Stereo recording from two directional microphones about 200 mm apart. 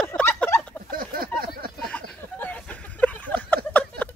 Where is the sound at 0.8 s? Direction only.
45° right (ahead or behind).